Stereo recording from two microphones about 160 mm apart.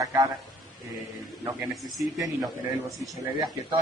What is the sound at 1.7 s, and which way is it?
Speech, centre (ahead or behind).